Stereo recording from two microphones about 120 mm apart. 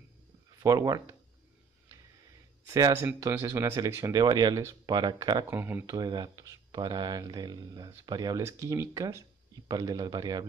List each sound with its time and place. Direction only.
0.6 s speech: 30° right (ahead or behind)
2.6 s speech: 25° right (ahead or behind)
5.5 s speech: 15° right (ahead or behind)
5.9 s speech: 35° right (ahead or behind)